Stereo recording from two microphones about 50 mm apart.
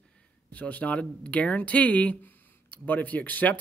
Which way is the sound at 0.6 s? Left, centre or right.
Left.